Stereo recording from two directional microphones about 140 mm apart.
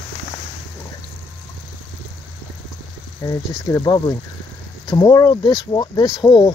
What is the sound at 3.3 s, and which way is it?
Speech, 25° left (ahead or behind).